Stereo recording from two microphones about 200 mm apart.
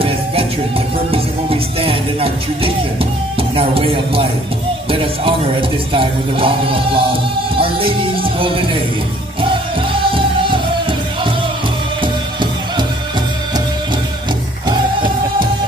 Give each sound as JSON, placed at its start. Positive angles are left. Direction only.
{"t": 1.1, "sound": "music", "side_deg": -30}
{"t": 5.9, "sound": "speech", "side_deg": -25}
{"t": 10.0, "sound": "music", "side_deg": -25}
{"t": 14.7, "sound": "music", "side_deg": -25}